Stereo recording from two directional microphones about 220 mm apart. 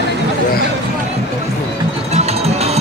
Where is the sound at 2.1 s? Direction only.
30° right (ahead or behind).